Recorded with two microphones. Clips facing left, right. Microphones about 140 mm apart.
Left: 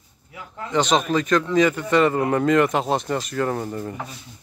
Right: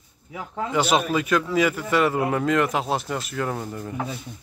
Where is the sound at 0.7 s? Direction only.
5° right (ahead or behind).